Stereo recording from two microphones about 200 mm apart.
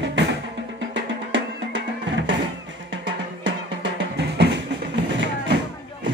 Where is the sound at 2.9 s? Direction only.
60° right (ahead or behind).